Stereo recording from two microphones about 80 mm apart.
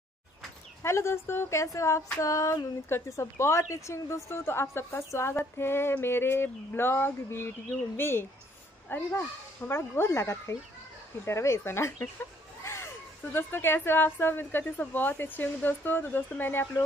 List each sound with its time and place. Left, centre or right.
0.8 s speech: left
2.1 s a sound: left
2.9 s a woman's voice: left